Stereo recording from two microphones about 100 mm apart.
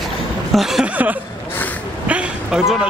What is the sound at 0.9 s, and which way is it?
Speech, 15° right (ahead or behind).